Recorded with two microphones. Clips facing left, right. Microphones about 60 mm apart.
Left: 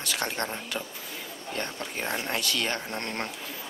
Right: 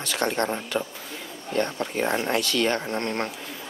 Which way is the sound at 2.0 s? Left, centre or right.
Centre.